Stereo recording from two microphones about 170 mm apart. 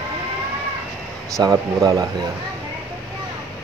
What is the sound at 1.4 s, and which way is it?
Speech, 20° right (ahead or behind).